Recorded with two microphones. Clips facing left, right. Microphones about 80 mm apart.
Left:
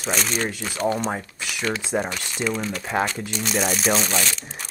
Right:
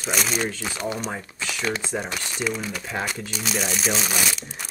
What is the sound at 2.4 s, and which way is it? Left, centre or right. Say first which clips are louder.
Speech: left 4 dB; centre.